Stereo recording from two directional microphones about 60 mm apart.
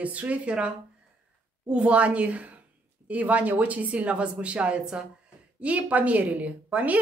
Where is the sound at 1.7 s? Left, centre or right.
Right.